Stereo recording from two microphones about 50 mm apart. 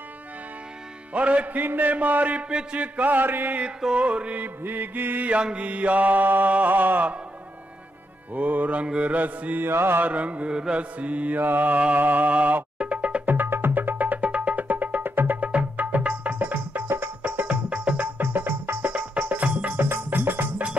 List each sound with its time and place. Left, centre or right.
1.1 s mantra: right
1.6 s mantra: right
2.0 s mantra: right
3.9 s mantra: right
4.6 s mantra: right
5.3 s mantra: right
8.4 s mantra: right
9.7 s mantra: right
10.0 s mantra: right
12.0 s music: right
13.3 s music: right
18.1 s music: right
18.9 s music: right
19.8 s music: right